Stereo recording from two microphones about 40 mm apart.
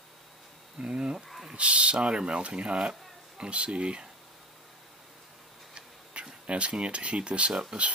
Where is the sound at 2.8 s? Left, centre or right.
Right.